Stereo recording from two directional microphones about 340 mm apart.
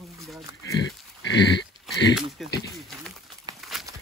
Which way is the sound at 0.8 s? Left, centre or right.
Left.